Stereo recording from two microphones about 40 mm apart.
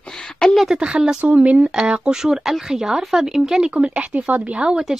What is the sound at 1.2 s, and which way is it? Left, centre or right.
Speech, right.